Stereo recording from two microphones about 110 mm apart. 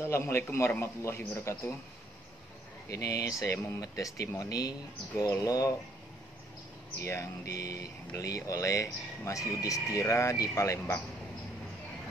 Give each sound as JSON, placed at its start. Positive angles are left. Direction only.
{"t": 0.0, "sound": "speech", "side_deg": 25}
{"t": 2.9, "sound": "speech", "side_deg": 30}
{"t": 7.0, "sound": "speech", "side_deg": 25}